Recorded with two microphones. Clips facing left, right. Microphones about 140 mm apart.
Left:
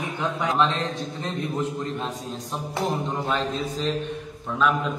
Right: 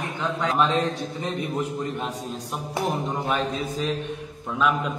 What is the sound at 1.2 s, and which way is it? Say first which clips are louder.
Speech: even; 10° right (ahead or behind).